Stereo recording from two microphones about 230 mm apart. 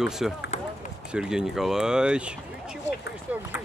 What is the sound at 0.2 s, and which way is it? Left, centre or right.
Speech, centre.